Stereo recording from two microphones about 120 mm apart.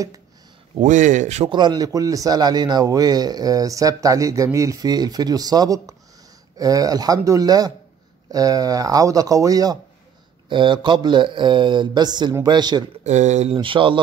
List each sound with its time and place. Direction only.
0.7 s speech: 90° right; by 1.5 s 75° right (ahead or behind)
1.5 s a man's voice: 35° right (ahead or behind)
10.5 s a man's voice: 40° right (ahead or behind)
13.0 s speech: 75° right (ahead or behind)
13.6 s speech: 45° right (ahead or behind)